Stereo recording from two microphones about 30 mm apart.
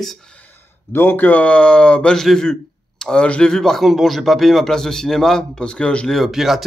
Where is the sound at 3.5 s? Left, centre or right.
Centre.